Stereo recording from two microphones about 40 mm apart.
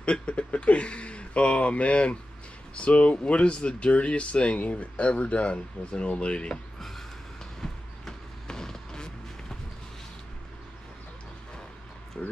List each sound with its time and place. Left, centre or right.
0.0 s speech: left
7.6 s vehicle: centre
12.2 s speech: left